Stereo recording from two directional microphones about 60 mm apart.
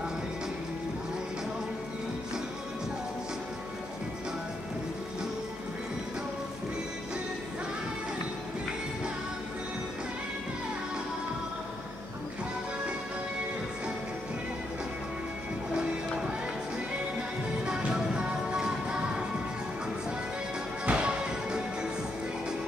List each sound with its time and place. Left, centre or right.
17.6 s music: centre
20.8 s music: centre